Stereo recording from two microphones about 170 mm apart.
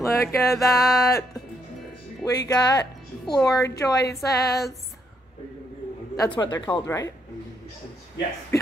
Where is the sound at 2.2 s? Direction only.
20° left (ahead or behind).